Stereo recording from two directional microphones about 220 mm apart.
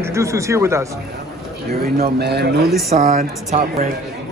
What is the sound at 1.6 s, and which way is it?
Speech, 45° right (ahead or behind).